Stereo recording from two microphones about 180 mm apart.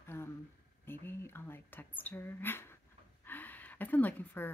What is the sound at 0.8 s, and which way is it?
A woman's voice, 10° left (ahead or behind).